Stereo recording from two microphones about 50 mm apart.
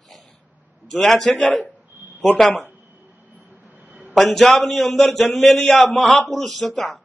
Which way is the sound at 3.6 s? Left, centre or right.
Right.